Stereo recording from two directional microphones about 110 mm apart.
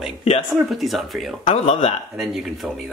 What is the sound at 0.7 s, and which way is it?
Speech, centre (ahead or behind).